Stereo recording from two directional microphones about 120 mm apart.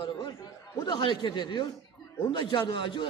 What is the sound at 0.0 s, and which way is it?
A man's voice, 40° left (ahead or behind).